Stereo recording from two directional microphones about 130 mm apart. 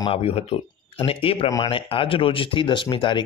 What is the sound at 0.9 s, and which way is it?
A man's voice, 45° left (ahead or behind).